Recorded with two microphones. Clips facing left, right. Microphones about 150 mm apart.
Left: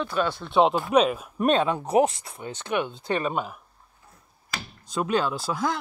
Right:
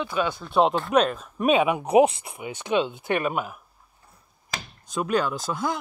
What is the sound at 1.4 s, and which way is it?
Speech, 10° right (ahead or behind).